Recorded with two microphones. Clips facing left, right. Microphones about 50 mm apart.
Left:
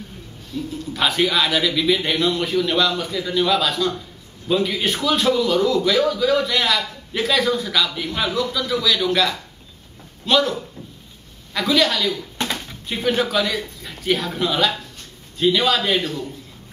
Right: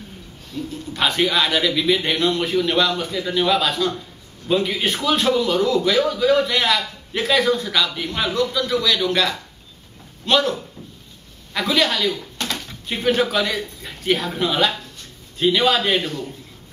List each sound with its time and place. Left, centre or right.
0.5 s a man's voice: centre
12.5 s bird: centre
12.9 s a man's voice: centre